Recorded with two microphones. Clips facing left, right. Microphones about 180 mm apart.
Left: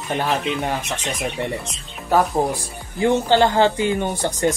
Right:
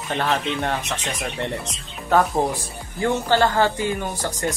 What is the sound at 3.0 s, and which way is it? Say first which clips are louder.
Speech: left 3 dB; 20° left (ahead or behind).